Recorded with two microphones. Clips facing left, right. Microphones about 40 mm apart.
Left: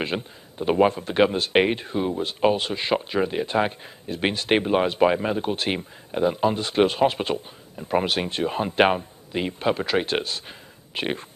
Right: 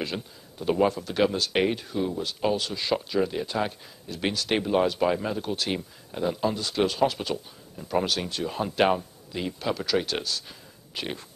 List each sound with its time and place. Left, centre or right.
0.0 s speech: left